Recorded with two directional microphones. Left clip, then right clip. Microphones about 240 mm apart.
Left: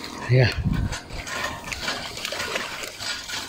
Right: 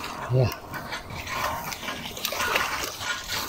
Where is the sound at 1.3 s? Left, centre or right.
Left.